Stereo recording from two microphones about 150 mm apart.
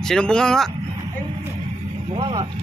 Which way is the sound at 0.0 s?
5° left (ahead or behind).